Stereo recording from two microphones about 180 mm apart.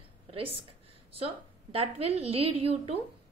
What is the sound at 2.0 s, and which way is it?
Speech, 35° right (ahead or behind).